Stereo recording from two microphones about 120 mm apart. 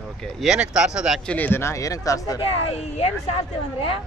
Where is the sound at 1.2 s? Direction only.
15° left (ahead or behind).